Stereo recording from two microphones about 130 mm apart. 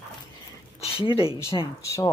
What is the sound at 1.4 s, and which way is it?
Speech, 20° left (ahead or behind).